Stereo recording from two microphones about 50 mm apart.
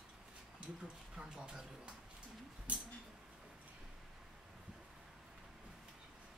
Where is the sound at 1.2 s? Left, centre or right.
Centre.